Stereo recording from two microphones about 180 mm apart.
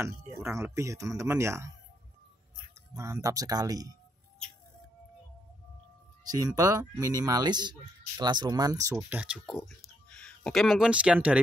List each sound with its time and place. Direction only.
0.0 s speech: 15° right (ahead or behind)
2.9 s speech: 20° right (ahead or behind)
6.3 s speech: 20° right (ahead or behind)